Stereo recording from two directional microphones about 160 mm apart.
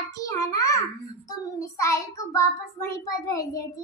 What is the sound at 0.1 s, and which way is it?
A child's voice, 20° left (ahead or behind).